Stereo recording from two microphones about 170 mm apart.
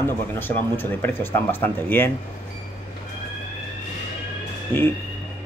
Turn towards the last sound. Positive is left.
turn(degrees=10)  # may be behind; listen again after turning